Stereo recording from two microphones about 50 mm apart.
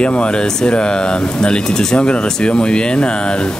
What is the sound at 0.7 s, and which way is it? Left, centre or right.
Speech, centre.